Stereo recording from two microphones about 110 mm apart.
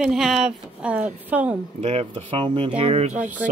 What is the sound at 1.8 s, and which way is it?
Speech, 75° right (ahead or behind).